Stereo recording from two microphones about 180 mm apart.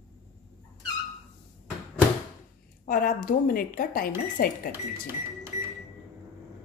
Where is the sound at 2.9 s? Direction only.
50° left (ahead or behind).